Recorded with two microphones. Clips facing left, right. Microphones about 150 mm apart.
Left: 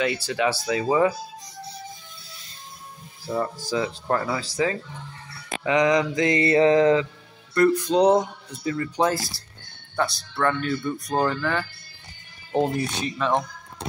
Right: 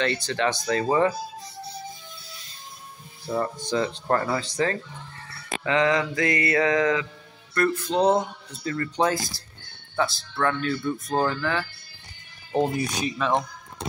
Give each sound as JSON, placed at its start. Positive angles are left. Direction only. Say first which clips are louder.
{"t": 0.0, "sound": "speech", "louder": "left 1 dB", "side_deg": 10}
{"t": 3.3, "sound": "speech", "louder": "even", "side_deg": 5}
{"t": 5.6, "sound": "mantra", "louder": "left 2 dB", "side_deg": 15}
{"t": 7.5, "sound": "speech", "louder": "left 4 dB", "side_deg": 15}
{"t": 12.8, "sound": "speech", "louder": "even", "side_deg": 0}